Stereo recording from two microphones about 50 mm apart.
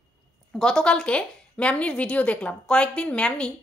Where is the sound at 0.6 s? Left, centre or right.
Centre.